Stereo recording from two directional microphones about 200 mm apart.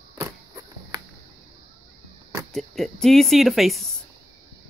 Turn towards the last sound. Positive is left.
turn(degrees=0)  # may be behind; listen again after turning